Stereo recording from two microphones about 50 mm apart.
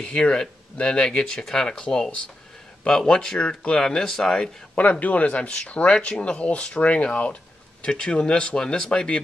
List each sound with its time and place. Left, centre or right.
0.0 s speech: centre
3.8 s speech: centre; by 7.3 s left
7.8 s speech: centre